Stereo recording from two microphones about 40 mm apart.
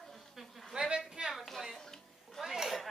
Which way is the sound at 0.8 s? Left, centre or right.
Right.